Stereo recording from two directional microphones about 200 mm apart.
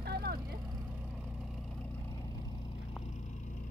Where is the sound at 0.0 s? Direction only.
50° right (ahead or behind).